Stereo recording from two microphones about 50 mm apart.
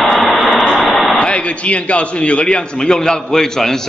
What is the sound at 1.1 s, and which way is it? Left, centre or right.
A man's voice, left.